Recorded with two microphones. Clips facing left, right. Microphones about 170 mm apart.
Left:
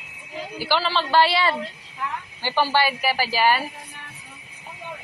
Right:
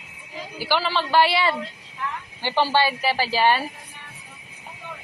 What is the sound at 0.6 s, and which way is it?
A woman's voice, 15° right (ahead or behind).